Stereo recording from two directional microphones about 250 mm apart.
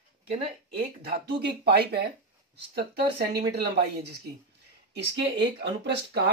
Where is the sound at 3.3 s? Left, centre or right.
Right.